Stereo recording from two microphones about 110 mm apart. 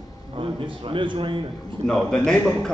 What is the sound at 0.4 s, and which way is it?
A man's voice, 50° right (ahead or behind).